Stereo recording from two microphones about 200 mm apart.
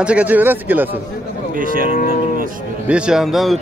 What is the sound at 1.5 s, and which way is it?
Speech, 45° right (ahead or behind).